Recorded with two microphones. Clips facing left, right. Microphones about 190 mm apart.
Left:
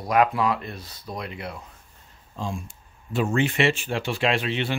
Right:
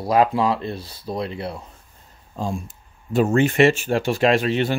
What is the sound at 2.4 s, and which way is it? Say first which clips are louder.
Speech: right 5 dB; 40° right (ahead or behind).